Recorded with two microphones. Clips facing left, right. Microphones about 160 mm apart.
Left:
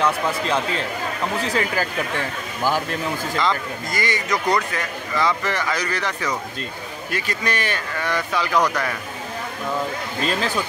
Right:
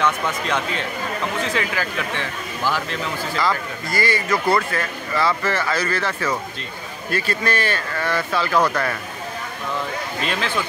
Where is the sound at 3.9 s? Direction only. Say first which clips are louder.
Right 3 dB; 20° left (ahead or behind).